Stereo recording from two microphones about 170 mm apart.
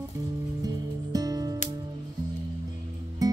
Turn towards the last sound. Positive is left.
turn(degrees=-20)  # may be behind; listen again after turning